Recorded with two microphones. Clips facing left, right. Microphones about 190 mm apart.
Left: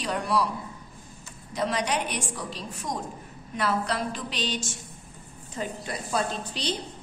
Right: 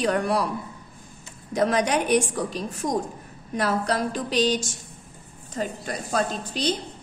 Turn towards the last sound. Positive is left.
turn(degrees=-45)  # may be behind; listen again after turning